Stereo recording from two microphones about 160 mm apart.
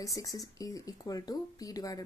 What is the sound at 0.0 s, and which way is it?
Speech, 20° left (ahead or behind).